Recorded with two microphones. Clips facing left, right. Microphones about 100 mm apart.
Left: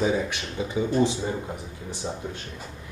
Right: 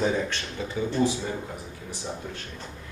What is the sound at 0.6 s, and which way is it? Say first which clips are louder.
Speech: left 3 dB; 15° left (ahead or behind).